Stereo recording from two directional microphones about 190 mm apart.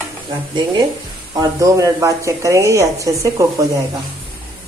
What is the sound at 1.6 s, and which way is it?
Speech, 15° right (ahead or behind).